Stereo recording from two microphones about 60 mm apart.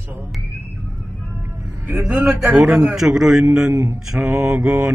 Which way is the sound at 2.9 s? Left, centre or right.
Centre.